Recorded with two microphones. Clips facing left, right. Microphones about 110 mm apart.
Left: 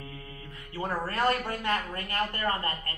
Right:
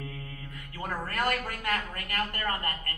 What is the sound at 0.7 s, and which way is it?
Speech, 30° left (ahead or behind).